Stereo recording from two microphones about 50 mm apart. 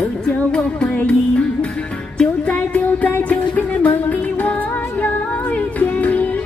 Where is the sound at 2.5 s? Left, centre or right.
Left.